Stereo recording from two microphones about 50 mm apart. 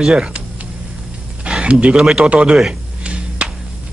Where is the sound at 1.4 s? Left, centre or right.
Right.